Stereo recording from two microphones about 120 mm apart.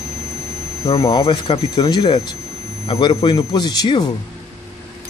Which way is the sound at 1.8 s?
35° left (ahead or behind).